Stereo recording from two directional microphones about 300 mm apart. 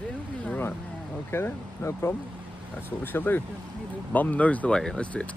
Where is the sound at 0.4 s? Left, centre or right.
Centre.